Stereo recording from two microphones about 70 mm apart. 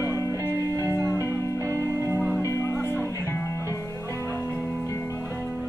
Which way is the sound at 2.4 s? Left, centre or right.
Left.